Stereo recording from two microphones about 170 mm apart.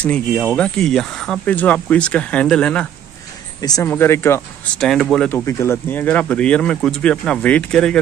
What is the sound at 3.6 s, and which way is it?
Speech, 20° left (ahead or behind).